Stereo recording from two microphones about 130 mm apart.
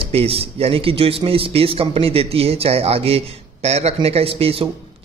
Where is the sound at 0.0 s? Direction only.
50° right (ahead or behind).